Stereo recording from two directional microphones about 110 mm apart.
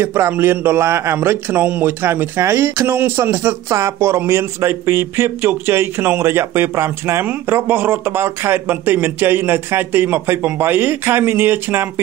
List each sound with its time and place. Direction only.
0.0 s a man's voice: 20° right (ahead or behind)